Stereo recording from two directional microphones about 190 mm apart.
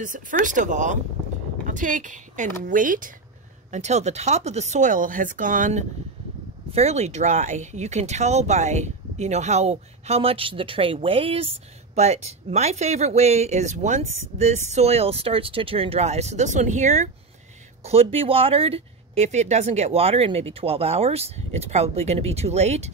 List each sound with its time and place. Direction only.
0.0 s speech: 45° right (ahead or behind)